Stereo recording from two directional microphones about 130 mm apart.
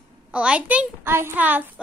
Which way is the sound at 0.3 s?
10° right (ahead or behind).